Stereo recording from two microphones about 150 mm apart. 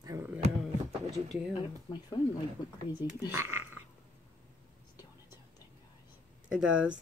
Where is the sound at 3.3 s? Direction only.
15° right (ahead or behind).